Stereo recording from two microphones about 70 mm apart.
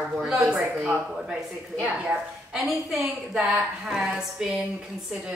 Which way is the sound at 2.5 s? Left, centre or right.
Centre.